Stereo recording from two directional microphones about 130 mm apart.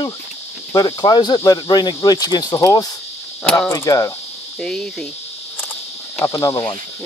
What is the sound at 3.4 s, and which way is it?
Speech, 5° left (ahead or behind).